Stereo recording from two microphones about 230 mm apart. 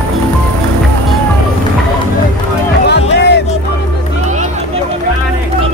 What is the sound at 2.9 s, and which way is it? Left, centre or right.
Music, left.